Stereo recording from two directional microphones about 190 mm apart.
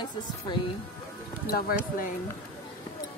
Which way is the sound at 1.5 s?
50° left (ahead or behind).